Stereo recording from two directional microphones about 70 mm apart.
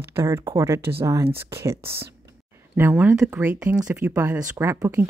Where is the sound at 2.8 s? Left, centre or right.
Right.